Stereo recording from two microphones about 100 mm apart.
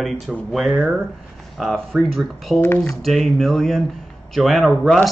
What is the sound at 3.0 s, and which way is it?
Speech, centre (ahead or behind).